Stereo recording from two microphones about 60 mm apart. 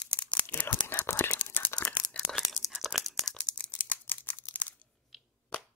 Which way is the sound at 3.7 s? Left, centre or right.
Left.